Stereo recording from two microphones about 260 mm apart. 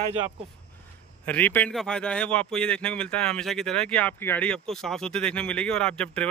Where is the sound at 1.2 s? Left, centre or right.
Centre.